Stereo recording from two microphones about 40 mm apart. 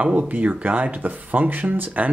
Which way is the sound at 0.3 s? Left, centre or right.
Right.